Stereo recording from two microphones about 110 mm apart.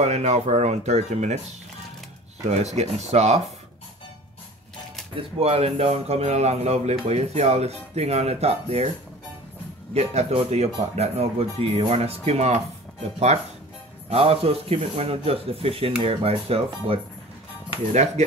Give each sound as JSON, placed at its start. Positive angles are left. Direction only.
{"t": 0.0, "sound": "speech", "side_deg": -90}
{"t": 2.4, "sound": "speech", "side_deg": -85}
{"t": 5.1, "sound": "speech", "side_deg": -60}
{"t": 9.9, "sound": "speech", "side_deg": -70}
{"t": 14.1, "sound": "speech", "side_deg": -65}
{"t": 17.9, "sound": "speech", "side_deg": -90}